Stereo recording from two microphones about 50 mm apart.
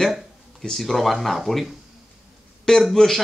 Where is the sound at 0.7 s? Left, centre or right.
Centre.